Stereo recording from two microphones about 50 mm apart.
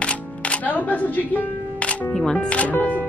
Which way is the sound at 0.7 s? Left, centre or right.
Left.